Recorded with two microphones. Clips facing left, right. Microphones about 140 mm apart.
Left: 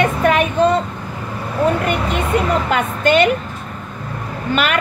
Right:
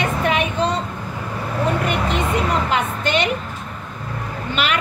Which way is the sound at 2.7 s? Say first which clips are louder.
Left 5 dB; 50° left (ahead or behind).